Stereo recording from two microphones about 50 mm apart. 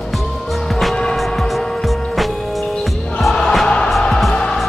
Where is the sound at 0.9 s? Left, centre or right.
Centre.